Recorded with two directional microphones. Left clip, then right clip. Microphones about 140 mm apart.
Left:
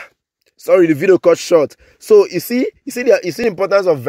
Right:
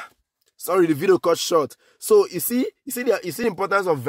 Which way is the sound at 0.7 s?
10° left (ahead or behind).